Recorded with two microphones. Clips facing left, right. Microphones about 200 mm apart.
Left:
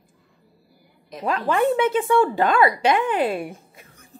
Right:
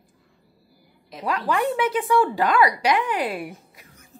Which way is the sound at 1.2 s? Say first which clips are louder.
Left 3 dB; 25° left (ahead or behind).